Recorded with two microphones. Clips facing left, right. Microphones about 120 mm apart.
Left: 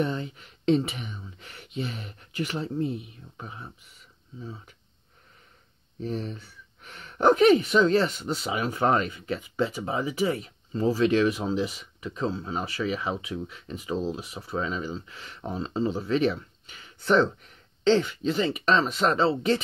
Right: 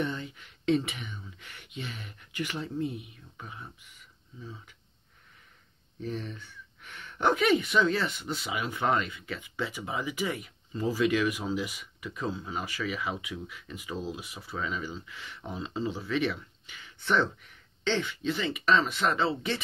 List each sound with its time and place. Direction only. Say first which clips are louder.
0.0 s speech: left 5 dB; 35° left (ahead or behind)
5.9 s speech: left 4 dB; 35° left (ahead or behind)